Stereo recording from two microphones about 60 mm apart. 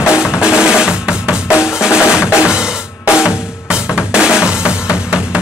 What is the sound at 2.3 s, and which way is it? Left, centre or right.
Drum kit, centre.